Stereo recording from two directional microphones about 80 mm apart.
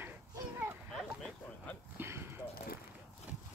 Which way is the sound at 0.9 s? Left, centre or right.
Centre.